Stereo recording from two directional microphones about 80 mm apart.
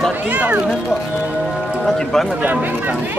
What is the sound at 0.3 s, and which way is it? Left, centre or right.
Speech, centre.